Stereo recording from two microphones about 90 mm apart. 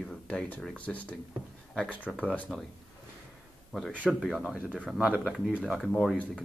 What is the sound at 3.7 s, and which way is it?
Speech, centre (ahead or behind).